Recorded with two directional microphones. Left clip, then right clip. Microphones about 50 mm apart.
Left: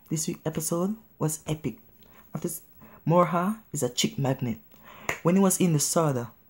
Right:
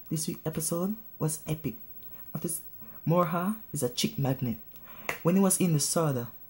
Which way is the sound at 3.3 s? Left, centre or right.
Left.